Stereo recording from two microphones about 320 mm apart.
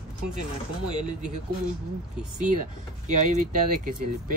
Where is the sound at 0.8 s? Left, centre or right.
Right.